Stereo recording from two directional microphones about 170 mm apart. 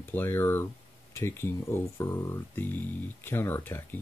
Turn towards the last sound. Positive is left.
turn(degrees=15)  # may be behind; listen again after turning